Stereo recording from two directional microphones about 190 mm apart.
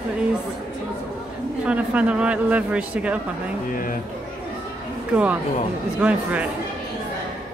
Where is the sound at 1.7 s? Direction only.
5° right (ahead or behind).